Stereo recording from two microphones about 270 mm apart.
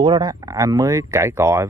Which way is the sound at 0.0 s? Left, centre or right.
Centre.